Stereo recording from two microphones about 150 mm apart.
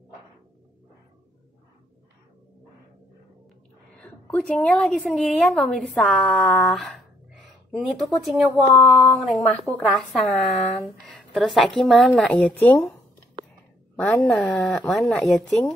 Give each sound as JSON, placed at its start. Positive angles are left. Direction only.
{"t": 4.0, "sound": "speech", "side_deg": 10}
{"t": 13.9, "sound": "speech", "side_deg": 10}